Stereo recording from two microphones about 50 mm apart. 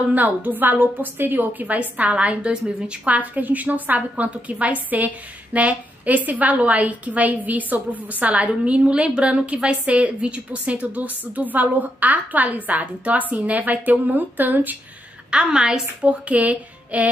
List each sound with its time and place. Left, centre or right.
0.1 s a woman's voice: right
15.3 s a woman's voice: centre; by 17.1 s right